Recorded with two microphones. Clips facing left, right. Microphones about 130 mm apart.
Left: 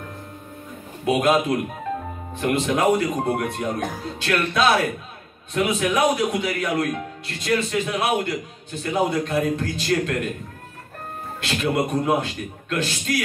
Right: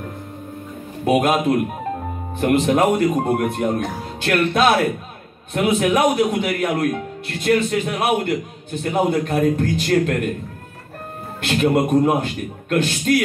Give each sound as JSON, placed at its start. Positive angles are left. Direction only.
{"t": 1.0, "sound": "a man's voice", "side_deg": -55}
{"t": 2.4, "sound": "a man's voice", "side_deg": -55}
{"t": 11.4, "sound": "a man's voice", "side_deg": -55}